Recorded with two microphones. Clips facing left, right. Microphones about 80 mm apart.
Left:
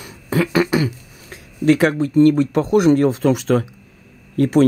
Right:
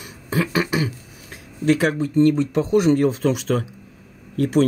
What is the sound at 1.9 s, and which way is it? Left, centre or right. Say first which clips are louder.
Speech: left 4 dB; left.